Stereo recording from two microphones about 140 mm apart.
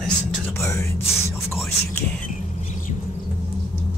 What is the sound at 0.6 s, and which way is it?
Speech, 20° left (ahead or behind).